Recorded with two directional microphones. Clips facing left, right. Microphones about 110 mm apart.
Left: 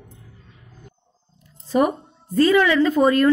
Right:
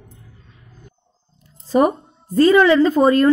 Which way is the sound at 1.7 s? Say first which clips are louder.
Right 3 dB; 35° right (ahead or behind).